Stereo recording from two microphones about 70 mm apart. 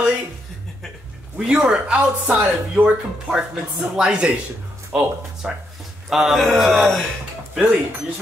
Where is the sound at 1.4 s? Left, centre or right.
Centre.